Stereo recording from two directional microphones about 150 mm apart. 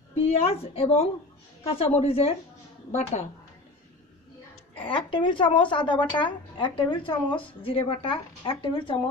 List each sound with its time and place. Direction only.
0.1 s a woman's voice: 40° left (ahead or behind)
4.8 s a woman's voice: 35° left (ahead or behind)